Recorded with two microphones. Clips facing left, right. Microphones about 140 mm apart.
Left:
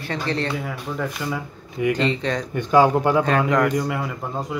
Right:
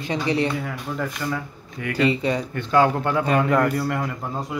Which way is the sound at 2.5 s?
15° left (ahead or behind).